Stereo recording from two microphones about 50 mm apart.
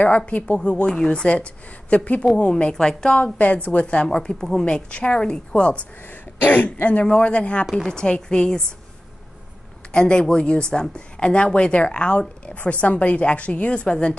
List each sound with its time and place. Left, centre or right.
0.3 s a woman's voice: left
2.7 s a woman's voice: centre
3.3 s speech: left
4.2 s a woman's voice: centre
9.9 s speech: centre